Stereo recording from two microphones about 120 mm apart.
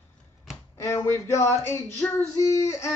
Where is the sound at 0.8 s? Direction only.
25° left (ahead or behind).